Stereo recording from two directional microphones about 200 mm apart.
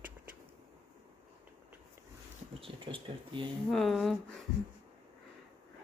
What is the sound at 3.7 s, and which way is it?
Speech, centre (ahead or behind).